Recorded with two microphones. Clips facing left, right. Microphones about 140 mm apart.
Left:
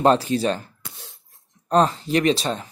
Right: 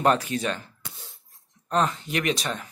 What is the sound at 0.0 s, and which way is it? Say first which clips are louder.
Speech: left 5 dB; 30° left (ahead or behind).